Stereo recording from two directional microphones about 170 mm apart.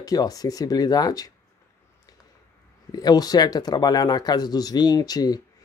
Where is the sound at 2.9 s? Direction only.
25° left (ahead or behind).